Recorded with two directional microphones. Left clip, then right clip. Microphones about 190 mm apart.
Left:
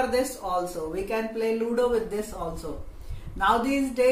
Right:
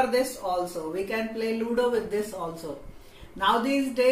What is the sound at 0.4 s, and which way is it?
Speech, 15° left (ahead or behind).